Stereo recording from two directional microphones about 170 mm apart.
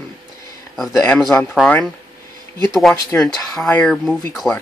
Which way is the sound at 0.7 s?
Centre (ahead or behind).